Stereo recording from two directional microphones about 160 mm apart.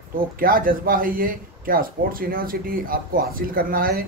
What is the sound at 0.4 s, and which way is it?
Speech, 60° right (ahead or behind).